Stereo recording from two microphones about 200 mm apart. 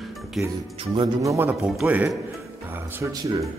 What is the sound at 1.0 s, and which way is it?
Speech, 15° right (ahead or behind).